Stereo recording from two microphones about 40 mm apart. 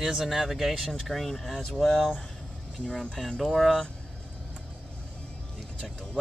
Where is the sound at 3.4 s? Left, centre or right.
Centre.